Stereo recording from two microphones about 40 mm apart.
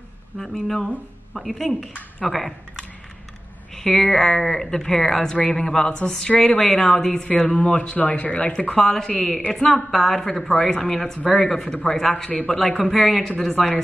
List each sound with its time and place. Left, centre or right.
0.4 s speech: centre
3.7 s speech: centre
6.3 s speech: left
6.6 s speech: centre; by 8.5 s left
8.7 s speech: centre